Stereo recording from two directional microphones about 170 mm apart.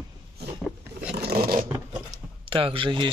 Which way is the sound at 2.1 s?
30° right (ahead or behind).